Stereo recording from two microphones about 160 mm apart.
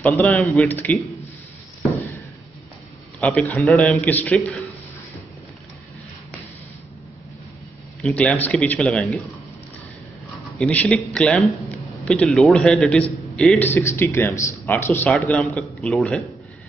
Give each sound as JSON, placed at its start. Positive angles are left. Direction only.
{"t": 0.0, "sound": "a man's voice", "side_deg": 10}
{"t": 3.2, "sound": "a man's voice", "side_deg": 10}
{"t": 8.0, "sound": "a man's voice", "side_deg": 5}
{"t": 10.6, "sound": "a man's voice", "side_deg": 10}